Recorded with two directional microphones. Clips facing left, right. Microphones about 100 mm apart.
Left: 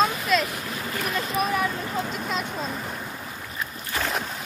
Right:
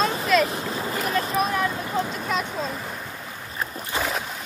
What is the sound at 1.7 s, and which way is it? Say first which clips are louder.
Vehicle: right 2 dB; 15° right (ahead or behind).